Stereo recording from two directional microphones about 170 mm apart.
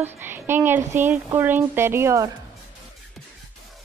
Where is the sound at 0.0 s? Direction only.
10° right (ahead or behind).